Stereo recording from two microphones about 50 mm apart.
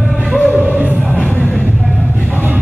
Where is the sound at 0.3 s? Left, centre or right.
Centre.